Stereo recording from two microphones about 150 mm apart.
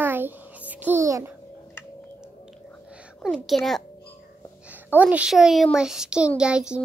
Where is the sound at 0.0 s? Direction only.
15° right (ahead or behind).